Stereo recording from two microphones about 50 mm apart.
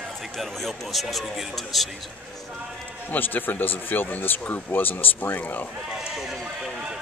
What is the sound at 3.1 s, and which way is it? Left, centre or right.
Speech, left.